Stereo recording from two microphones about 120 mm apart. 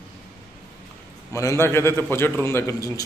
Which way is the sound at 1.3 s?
25° left (ahead or behind).